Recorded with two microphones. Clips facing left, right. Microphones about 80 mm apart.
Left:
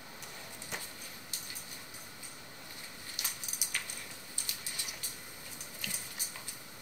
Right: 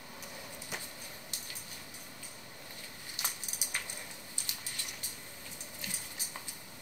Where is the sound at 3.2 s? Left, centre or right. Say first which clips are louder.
Right 4 dB; right.